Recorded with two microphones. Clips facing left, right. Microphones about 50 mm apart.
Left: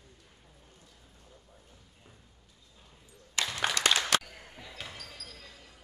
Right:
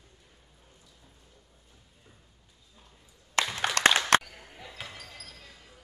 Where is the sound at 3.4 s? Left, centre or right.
Right.